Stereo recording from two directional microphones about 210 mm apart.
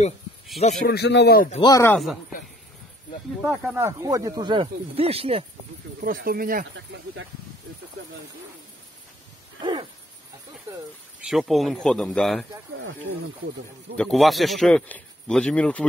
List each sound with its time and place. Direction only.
0.8 s speech: 50° left (ahead or behind)
1.5 s speech: 20° left (ahead or behind)
2.0 s speech: centre (ahead or behind)
3.4 s speech: 10° right (ahead or behind); by 5.4 s 25° right (ahead or behind)
5.9 s speech: 40° right (ahead or behind)
9.6 s owl: 20° right (ahead or behind)
11.1 s speech: centre (ahead or behind)
13.9 s speech: centre (ahead or behind)